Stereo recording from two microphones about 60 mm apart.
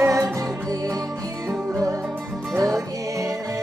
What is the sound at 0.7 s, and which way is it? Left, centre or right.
Music, right.